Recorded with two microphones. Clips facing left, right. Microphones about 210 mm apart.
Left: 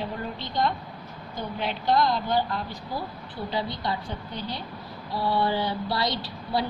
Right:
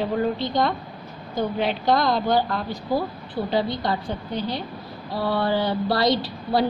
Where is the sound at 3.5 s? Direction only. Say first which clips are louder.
Right 6 dB; 90° right.